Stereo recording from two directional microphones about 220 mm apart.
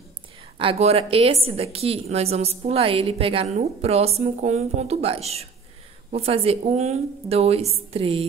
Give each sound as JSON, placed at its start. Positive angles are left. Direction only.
{"t": 0.6, "sound": "a woman's voice", "side_deg": -25}